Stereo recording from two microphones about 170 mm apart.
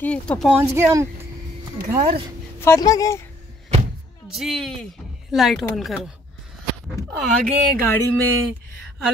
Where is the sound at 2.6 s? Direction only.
15° left (ahead or behind).